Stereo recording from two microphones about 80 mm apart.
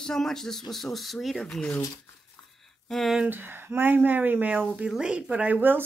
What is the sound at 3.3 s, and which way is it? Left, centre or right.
Speech, right.